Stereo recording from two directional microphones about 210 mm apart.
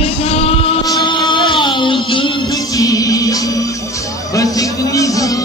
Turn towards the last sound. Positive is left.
turn(degrees=15)  # may be behind; listen again after turning